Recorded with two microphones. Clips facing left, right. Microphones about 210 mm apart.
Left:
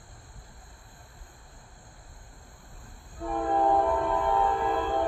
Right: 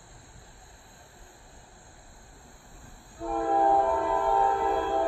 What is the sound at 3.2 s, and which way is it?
Train, 5° right (ahead or behind).